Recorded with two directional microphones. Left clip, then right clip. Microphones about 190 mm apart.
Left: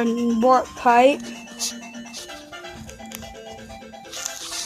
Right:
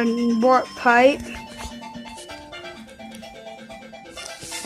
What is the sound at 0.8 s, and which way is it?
Speech, 10° left (ahead or behind).